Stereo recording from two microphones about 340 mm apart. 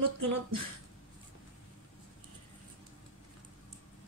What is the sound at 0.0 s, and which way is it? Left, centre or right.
Speech, right.